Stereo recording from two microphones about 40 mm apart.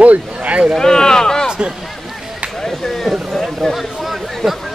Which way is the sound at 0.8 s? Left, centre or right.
Centre.